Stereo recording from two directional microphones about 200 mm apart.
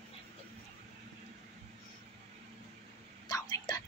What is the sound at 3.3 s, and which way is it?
Whispering, 15° left (ahead or behind).